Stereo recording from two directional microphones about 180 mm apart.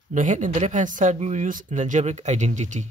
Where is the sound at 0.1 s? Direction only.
45° right (ahead or behind).